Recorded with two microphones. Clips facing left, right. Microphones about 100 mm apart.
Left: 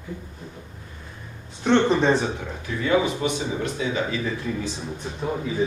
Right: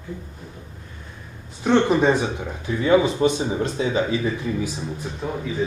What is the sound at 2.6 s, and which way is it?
Speech, 25° right (ahead or behind).